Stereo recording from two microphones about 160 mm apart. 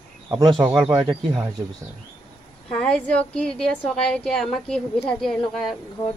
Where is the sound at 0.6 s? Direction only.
10° right (ahead or behind).